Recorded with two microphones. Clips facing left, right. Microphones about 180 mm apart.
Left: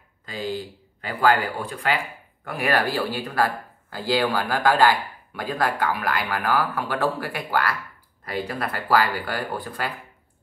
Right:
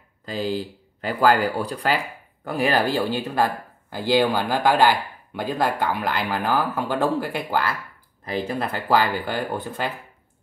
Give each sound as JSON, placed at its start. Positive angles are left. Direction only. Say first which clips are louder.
{"t": 1.0, "sound": "speech", "louder": "right 2 dB", "side_deg": -40}